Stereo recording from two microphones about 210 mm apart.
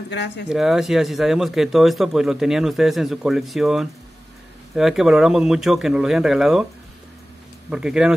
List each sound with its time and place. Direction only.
0.1 s speech: 55° left (ahead or behind)
0.5 s speech: centre (ahead or behind)
7.7 s speech: 5° right (ahead or behind)